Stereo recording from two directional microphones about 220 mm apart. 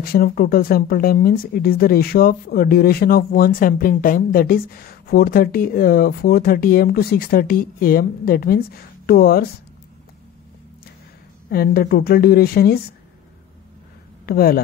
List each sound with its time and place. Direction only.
0.0 s speech: 45° left (ahead or behind)
11.5 s speech: 45° left (ahead or behind)
14.2 s speech: 45° left (ahead or behind)